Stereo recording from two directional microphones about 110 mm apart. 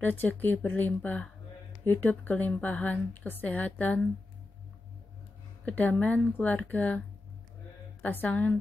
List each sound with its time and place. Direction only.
0.0 s speech: 15° left (ahead or behind)
5.7 s speech: 15° left (ahead or behind)
8.0 s speech: 15° left (ahead or behind)